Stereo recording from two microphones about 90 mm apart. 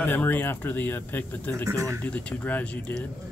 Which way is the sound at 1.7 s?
35° right (ahead or behind).